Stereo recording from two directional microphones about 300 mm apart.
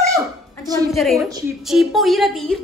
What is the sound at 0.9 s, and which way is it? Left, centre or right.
A woman's voice, centre.